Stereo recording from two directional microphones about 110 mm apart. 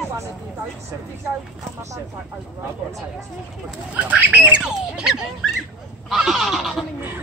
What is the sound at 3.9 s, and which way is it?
Speech, 15° right (ahead or behind).